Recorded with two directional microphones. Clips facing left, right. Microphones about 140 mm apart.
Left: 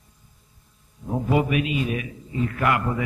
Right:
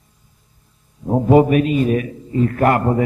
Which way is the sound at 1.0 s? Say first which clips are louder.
Right 10 dB; 40° right (ahead or behind).